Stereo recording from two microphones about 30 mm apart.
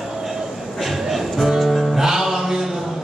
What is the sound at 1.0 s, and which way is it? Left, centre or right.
Music, centre.